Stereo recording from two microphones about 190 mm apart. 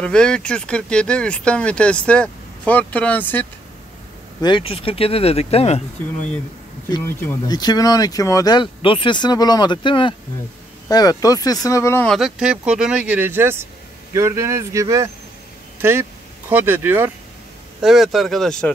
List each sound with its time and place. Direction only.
0.0 s speech: 5° left (ahead or behind)
4.4 s speech: 25° left (ahead or behind)
6.9 s speech: 15° left (ahead or behind)
12.2 s speech: 5° right (ahead or behind)
17.8 s speech: centre (ahead or behind)